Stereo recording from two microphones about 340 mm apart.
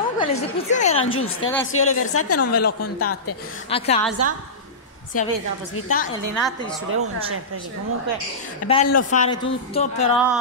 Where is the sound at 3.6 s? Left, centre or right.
Centre.